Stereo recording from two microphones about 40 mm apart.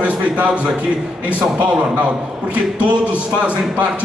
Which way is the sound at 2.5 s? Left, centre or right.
Right.